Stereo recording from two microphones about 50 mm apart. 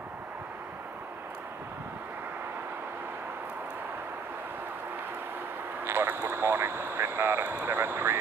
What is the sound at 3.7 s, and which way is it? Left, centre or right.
Vehicle, right.